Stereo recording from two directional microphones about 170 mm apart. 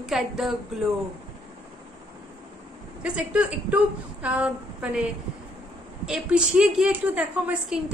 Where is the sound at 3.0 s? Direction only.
5° right (ahead or behind).